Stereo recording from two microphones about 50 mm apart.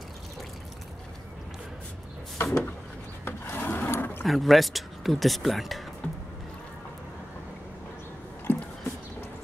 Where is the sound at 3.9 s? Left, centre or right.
Left.